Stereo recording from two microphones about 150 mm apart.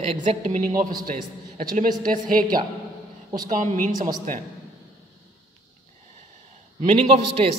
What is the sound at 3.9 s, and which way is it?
Speech, 25° right (ahead or behind).